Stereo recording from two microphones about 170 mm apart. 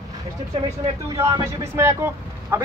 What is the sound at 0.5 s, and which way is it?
Speech, 35° right (ahead or behind).